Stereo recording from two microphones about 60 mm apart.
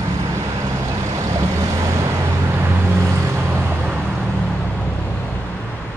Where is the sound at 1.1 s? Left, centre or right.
Right.